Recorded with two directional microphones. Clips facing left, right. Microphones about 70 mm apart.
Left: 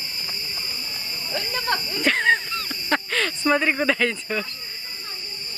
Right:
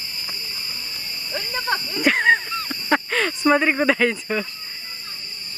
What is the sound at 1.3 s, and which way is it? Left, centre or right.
Snake, right.